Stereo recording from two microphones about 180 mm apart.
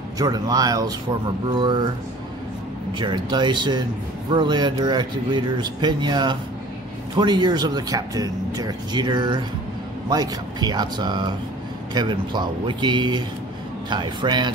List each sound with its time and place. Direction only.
0.2 s speech: 20° right (ahead or behind)
3.0 s speech: 25° right (ahead or behind)